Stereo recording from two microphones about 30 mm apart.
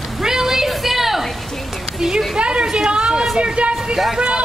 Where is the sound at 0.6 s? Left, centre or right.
Centre.